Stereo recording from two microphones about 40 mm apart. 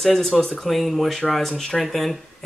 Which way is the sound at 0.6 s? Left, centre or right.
Centre.